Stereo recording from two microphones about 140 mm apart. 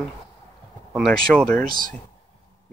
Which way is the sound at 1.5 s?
85° right.